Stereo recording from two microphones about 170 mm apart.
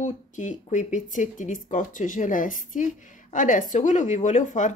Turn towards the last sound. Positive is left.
turn(degrees=45)  # may be behind; listen again after turning